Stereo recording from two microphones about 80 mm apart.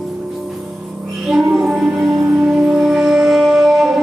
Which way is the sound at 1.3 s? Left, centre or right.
Centre.